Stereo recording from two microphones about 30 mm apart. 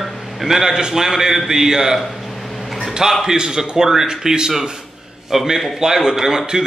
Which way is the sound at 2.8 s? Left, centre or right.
Centre.